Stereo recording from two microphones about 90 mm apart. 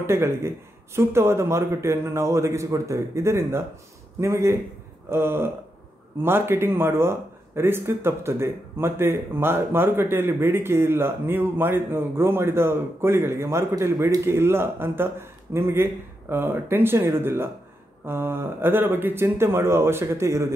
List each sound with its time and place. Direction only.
0.0 s a man's voice: 30° right (ahead or behind)